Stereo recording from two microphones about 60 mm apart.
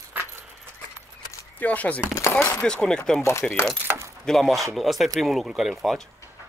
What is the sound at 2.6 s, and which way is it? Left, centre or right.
Speech, centre.